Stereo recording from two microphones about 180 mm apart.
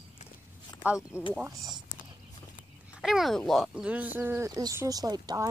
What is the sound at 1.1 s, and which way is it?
Speech, 5° right (ahead or behind).